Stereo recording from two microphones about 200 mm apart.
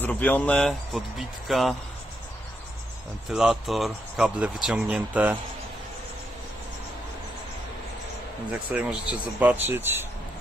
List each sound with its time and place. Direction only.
0.0 s speech: 10° left (ahead or behind)
3.3 s speech: centre (ahead or behind)
8.7 s speech: 5° right (ahead or behind)